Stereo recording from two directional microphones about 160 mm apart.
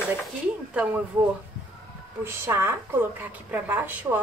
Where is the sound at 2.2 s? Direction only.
15° right (ahead or behind).